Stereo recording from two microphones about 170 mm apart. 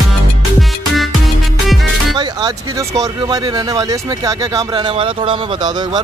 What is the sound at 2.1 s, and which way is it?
Speech, 20° right (ahead or behind).